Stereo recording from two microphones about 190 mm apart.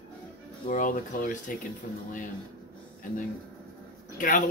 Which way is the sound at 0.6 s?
45° left (ahead or behind).